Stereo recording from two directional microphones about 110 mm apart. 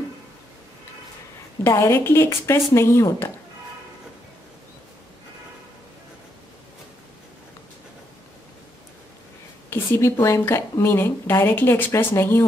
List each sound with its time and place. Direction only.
1.6 s speech: 25° left (ahead or behind)
9.7 s a woman's voice: 20° left (ahead or behind)